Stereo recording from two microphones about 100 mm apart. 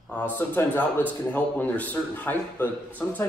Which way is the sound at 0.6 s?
20° left (ahead or behind).